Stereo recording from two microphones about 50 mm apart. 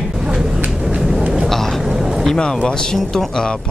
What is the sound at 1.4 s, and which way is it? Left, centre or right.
Speech, centre.